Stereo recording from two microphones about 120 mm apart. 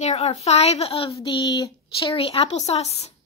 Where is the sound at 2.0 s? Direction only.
50° left (ahead or behind).